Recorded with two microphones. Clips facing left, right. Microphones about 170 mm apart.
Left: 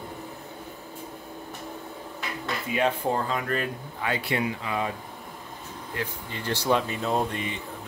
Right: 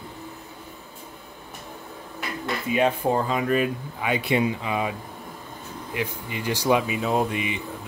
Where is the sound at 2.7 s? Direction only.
15° right (ahead or behind).